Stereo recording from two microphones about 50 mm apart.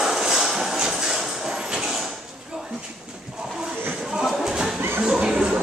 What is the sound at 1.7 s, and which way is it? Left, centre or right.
Sliding door, centre.